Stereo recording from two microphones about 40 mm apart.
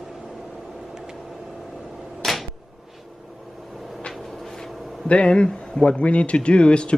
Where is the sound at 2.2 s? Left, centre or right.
Centre.